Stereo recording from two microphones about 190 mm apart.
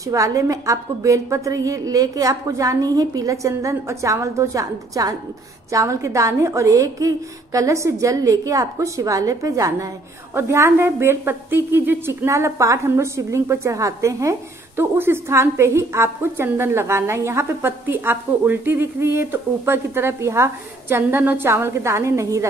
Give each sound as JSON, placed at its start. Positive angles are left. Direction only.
{"t": 0.0, "sound": "a woman's voice", "side_deg": -15}